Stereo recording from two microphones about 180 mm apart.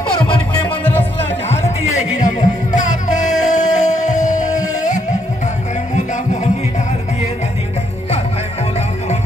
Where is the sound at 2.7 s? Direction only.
40° left (ahead or behind).